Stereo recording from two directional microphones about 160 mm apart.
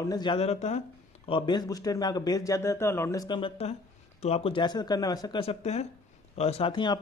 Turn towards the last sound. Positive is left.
turn(degrees=30)  # may be behind; listen again after turning